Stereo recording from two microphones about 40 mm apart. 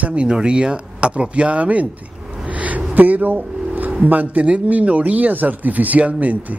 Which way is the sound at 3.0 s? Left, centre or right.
Right.